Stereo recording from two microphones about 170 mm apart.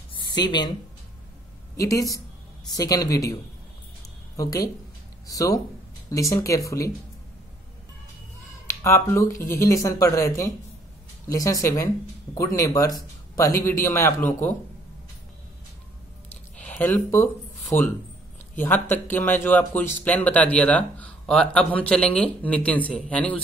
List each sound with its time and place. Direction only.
0.4 s speech: 25° left (ahead or behind)
1.8 s speech: 20° left (ahead or behind)
4.4 s speech: 20° left (ahead or behind)
8.6 s speech: 15° left (ahead or behind)
16.5 s speech: 10° left (ahead or behind)